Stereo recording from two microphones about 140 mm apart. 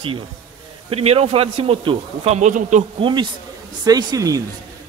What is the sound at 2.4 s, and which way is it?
Speech, 60° right (ahead or behind).